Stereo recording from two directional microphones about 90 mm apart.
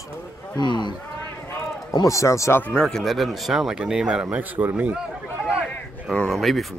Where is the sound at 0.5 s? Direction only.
55° left (ahead or behind).